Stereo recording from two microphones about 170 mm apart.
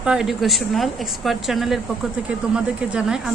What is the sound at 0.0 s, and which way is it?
Speech, 5° right (ahead or behind).